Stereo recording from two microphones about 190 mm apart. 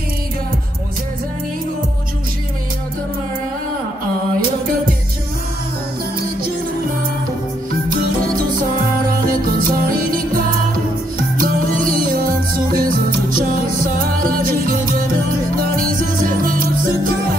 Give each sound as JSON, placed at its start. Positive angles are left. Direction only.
{"t": 9.3, "sound": "music", "side_deg": -50}
{"t": 11.3, "sound": "music", "side_deg": -50}